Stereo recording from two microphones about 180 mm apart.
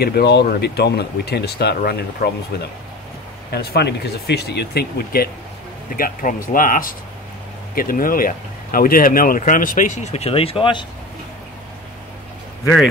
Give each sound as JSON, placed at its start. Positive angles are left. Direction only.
{"t": 0.0, "sound": "speech", "side_deg": 65}